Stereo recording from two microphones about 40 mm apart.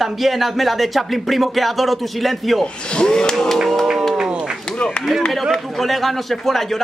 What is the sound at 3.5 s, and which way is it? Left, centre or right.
Speech, centre.